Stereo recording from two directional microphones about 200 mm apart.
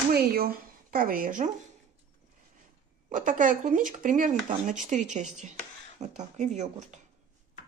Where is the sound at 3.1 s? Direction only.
40° right (ahead or behind).